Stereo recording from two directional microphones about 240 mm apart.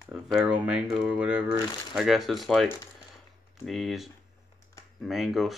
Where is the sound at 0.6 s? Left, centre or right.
Centre.